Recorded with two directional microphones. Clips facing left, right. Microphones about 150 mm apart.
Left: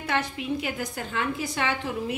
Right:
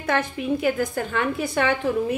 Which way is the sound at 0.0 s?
45° right (ahead or behind).